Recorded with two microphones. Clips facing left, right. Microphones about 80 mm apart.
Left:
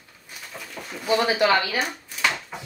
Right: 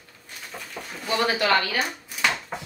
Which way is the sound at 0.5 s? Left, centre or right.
Centre.